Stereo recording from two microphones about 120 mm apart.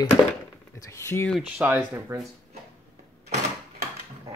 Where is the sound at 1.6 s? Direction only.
15° right (ahead or behind).